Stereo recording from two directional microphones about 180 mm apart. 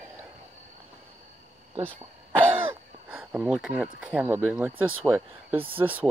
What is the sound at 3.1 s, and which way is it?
Speech, 5° right (ahead or behind).